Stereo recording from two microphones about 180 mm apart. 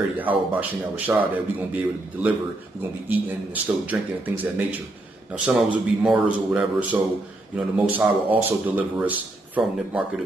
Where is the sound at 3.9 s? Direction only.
5° right (ahead or behind).